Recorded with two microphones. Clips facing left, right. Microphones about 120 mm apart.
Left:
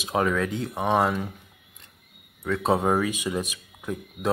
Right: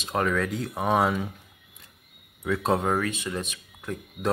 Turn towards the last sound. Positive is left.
turn(degrees=5)  # may be behind; listen again after turning